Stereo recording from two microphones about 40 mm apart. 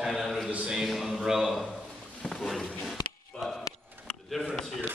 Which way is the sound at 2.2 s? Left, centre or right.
Centre.